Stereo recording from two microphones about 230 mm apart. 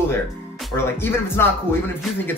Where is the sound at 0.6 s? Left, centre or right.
Centre.